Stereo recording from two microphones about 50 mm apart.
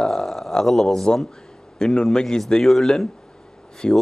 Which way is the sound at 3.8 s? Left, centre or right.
Centre.